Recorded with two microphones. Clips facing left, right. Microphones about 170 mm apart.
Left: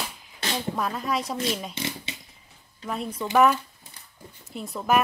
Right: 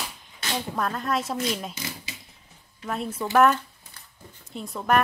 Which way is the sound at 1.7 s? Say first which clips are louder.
Left 4 dB; 25° left (ahead or behind).